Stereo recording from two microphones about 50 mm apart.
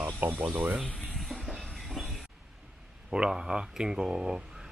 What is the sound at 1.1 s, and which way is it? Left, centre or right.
Train, centre.